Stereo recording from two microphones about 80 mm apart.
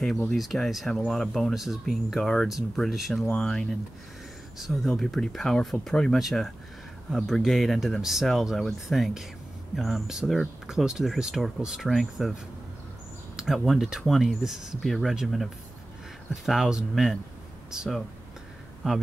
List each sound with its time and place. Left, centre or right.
0.0 s speech: centre
3.3 s speech: centre
4.6 s speech: centre
13.4 s speech: centre